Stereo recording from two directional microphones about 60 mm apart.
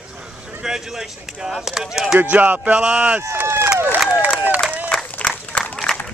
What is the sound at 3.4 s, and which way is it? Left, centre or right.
Speech, right.